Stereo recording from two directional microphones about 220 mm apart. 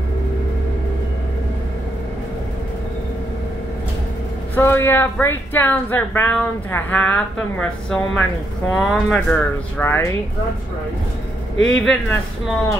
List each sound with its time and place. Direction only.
4.6 s speech: 10° left (ahead or behind)
11.7 s speech: 5° left (ahead or behind)